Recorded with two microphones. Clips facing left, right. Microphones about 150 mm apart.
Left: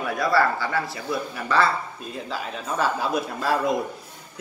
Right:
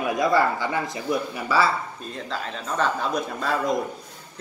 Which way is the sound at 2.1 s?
5° left (ahead or behind).